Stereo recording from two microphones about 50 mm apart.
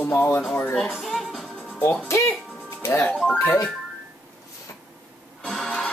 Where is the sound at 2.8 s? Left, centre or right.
Left.